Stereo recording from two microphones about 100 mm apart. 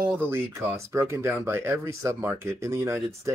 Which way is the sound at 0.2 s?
25° right (ahead or behind).